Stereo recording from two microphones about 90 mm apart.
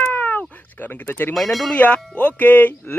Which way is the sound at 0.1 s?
20° left (ahead or behind).